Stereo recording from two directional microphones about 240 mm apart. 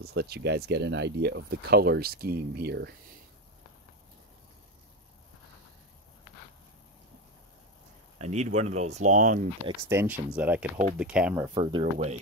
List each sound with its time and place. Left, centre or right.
0.0 s speech: right
8.2 s speech: right
9.8 s speech: centre
11.5 s speech: right